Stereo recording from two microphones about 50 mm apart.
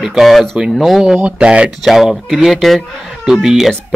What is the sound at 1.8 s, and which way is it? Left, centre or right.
A man's voice, centre.